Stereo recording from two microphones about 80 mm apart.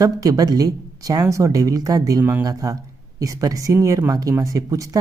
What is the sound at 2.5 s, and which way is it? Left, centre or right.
Speech, right.